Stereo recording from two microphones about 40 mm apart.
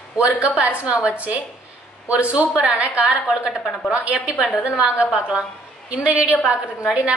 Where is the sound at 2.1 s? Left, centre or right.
Right.